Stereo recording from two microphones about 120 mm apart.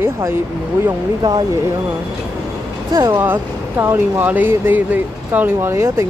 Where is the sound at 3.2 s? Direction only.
20° right (ahead or behind).